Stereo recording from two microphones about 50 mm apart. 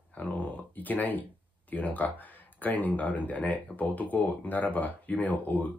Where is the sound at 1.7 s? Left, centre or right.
Left.